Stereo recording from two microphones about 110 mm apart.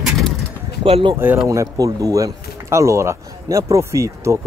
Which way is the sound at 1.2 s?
20° right (ahead or behind).